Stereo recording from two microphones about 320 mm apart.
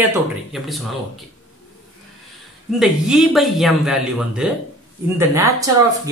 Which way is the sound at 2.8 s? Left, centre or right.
Centre.